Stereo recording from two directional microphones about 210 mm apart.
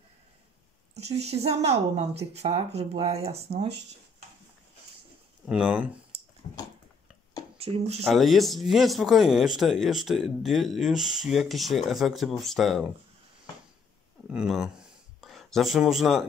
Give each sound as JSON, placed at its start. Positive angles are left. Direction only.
{"t": 0.9, "sound": "speech", "side_deg": -30}
{"t": 5.5, "sound": "speech", "side_deg": -5}
{"t": 7.5, "sound": "speech", "side_deg": -30}
{"t": 8.0, "sound": "speech", "side_deg": 0}
{"t": 14.3, "sound": "speech", "side_deg": -5}